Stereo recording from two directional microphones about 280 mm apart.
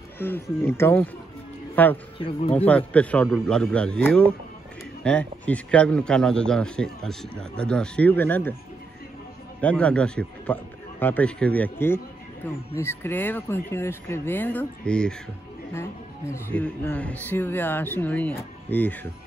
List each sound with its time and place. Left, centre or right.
0.2 s speech: centre
2.1 s speech: centre
2.5 s a man's voice: centre
9.6 s a man's voice: centre